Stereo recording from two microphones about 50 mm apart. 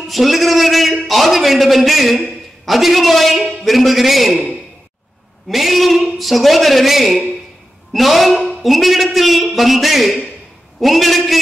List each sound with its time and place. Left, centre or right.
0.1 s a man's voice: centre
5.5 s a man's voice: centre